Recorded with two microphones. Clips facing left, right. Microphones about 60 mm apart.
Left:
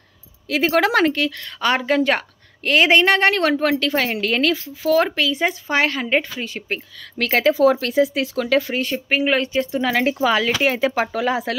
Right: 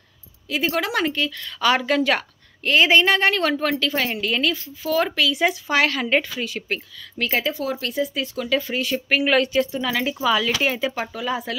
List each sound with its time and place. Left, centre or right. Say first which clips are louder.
0.6 s speech: left 6 dB; left
1.0 s speech: left 4 dB; left
1.6 s speech: left 1 dB; left
2.6 s speech: left 2 dB; left
5.0 s speech: even; left
7.2 s speech: left 7 dB; left
8.9 s speech: right 1 dB; left
9.8 s speech: left 5 dB; left
11.1 s speech: left 5 dB; left